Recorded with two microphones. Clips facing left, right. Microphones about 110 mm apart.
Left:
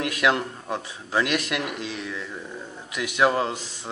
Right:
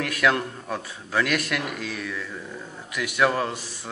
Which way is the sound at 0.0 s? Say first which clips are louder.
Even; 20° left (ahead or behind).